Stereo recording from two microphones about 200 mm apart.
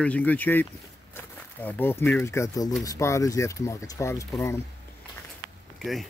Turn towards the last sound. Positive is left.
turn(degrees=0)  # may be behind; listen again after turning